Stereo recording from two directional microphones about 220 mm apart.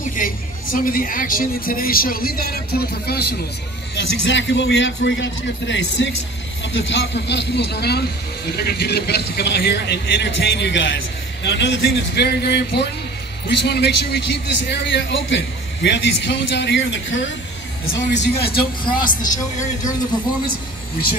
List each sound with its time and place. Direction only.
0.0 s a man's voice: 40° left (ahead or behind)